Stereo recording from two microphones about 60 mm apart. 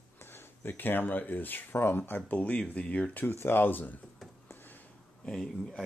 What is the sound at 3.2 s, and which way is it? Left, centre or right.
Speech, left.